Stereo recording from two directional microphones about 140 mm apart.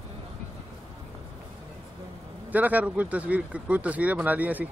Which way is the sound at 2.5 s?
10° right (ahead or behind).